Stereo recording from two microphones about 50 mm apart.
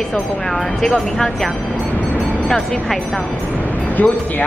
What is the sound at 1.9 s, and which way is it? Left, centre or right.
Music, left.